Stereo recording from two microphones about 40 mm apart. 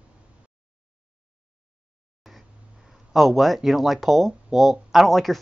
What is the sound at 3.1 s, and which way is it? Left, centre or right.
Speech, centre.